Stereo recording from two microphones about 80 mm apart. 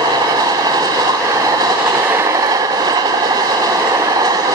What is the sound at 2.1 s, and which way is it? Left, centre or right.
Train, right.